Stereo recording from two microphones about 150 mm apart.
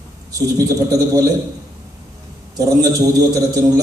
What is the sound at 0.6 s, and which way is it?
Speech, 20° right (ahead or behind).